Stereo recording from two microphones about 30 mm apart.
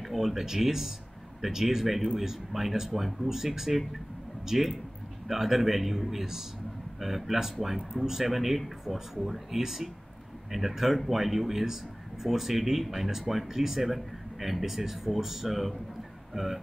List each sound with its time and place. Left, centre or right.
0.0 s speech: centre
3.3 s speech: centre
16.3 s a sound: centre